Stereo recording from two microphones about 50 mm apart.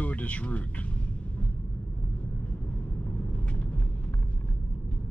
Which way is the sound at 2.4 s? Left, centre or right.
Left.